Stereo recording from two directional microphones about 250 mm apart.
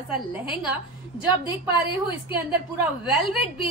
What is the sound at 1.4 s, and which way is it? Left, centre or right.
Speech, centre.